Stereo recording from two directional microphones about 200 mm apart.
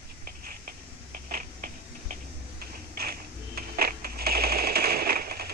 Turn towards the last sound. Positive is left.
turn(degrees=-50)  # may be behind; listen again after turning